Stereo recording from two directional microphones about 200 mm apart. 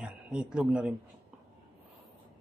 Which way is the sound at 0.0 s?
5° right (ahead or behind).